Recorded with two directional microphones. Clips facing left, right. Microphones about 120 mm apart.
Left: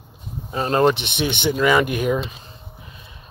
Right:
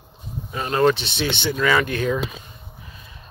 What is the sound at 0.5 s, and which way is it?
Speech, 30° left (ahead or behind).